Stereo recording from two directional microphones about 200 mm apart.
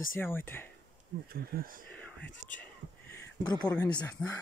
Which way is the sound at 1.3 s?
45° right (ahead or behind).